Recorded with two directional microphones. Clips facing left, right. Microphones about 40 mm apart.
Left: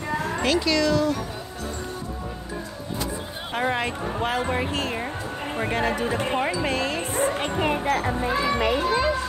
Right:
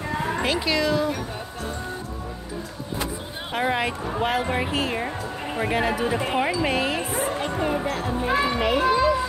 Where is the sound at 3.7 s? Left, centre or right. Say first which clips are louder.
Right 1 dB; centre.